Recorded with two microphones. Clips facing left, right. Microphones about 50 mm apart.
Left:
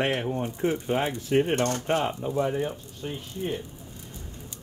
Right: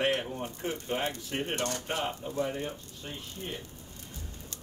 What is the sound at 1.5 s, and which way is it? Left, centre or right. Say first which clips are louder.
Speech: left 7 dB; left.